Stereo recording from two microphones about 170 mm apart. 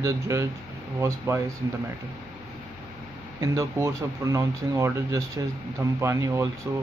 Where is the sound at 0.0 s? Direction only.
20° right (ahead or behind).